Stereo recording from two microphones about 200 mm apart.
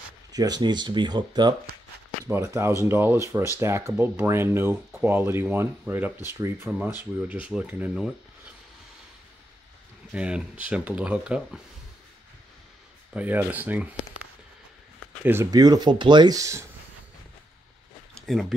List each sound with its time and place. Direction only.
0.3 s speech: 20° right (ahead or behind)
10.1 s speech: 5° right (ahead or behind)
13.1 s speech: 5° right (ahead or behind)
15.2 s speech: 15° right (ahead or behind)
18.1 s a sound: centre (ahead or behind)